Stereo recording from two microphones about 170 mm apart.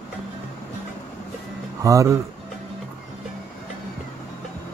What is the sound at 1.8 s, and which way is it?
Speech, 20° right (ahead or behind).